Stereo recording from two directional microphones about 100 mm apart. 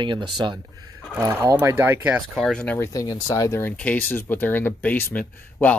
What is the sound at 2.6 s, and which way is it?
Speech, 25° left (ahead or behind).